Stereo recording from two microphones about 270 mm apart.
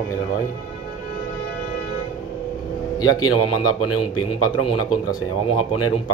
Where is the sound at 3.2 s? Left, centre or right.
Left.